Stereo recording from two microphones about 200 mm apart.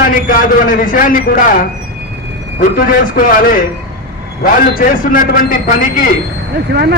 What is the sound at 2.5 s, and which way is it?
A man's voice, 45° left (ahead or behind).